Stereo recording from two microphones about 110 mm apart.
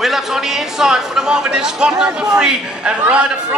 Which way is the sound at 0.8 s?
5° right (ahead or behind).